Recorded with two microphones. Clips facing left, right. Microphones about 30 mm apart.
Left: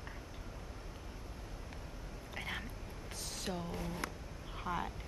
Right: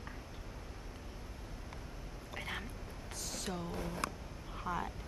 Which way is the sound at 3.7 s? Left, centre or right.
Right.